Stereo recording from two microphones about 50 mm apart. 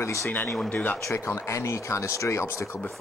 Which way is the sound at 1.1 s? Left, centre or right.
Left.